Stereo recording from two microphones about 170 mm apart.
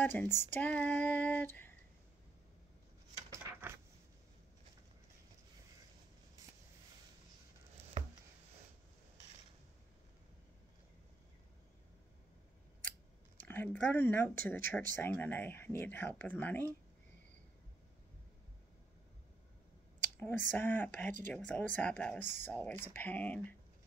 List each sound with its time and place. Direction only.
0.0 s speech: 10° left (ahead or behind)
3.2 s coin: 20° right (ahead or behind)
13.4 s speech: 10° left (ahead or behind)
20.2 s speech: 10° left (ahead or behind)